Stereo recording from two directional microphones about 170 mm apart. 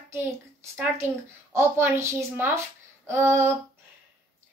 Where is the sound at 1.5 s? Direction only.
15° right (ahead or behind).